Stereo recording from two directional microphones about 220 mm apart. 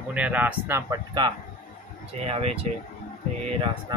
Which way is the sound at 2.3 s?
30° right (ahead or behind).